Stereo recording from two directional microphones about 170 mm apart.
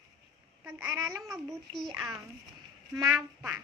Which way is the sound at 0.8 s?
15° right (ahead or behind).